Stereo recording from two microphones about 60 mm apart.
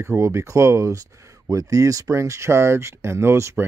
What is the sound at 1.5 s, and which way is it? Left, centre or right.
Speech, right.